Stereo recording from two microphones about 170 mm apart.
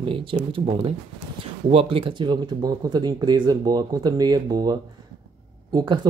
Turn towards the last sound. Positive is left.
turn(degrees=-25)  # may be behind; listen again after turning